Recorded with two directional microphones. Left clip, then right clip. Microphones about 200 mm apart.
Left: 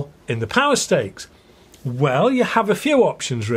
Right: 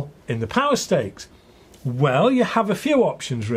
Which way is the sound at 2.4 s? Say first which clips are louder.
Left 3 dB; 35° left (ahead or behind).